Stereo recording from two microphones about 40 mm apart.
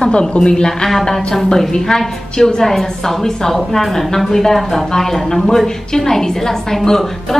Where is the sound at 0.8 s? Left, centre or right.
Centre.